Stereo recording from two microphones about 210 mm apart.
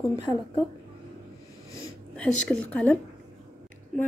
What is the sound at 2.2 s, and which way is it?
Speech, 5° left (ahead or behind).